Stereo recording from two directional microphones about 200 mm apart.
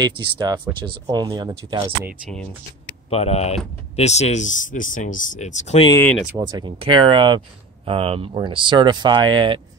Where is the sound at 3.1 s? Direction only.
30° left (ahead or behind).